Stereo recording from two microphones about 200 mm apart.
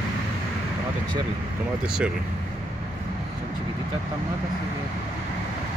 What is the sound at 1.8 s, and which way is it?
Speech, 5° right (ahead or behind).